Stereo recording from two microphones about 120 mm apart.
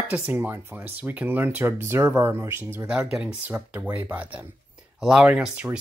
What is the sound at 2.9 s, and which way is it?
Speech, 10° right (ahead or behind).